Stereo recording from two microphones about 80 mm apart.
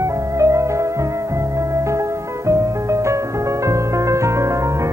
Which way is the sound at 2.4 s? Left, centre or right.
Right.